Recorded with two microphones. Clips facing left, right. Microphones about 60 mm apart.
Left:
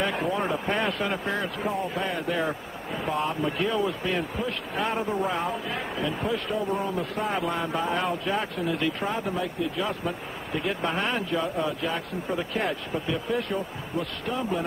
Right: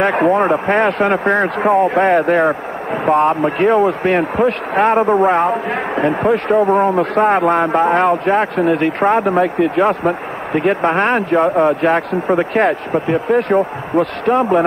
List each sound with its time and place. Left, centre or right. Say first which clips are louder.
0.0 s speech: right 13 dB; right